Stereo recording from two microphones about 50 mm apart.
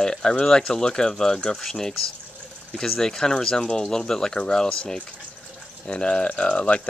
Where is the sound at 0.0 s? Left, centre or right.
Centre.